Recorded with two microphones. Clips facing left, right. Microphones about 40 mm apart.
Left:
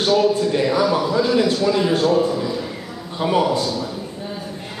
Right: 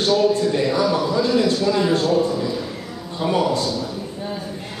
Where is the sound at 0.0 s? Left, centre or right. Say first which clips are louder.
Left 1 dB; centre.